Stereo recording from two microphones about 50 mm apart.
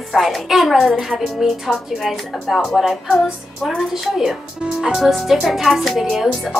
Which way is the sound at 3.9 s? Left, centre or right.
Centre.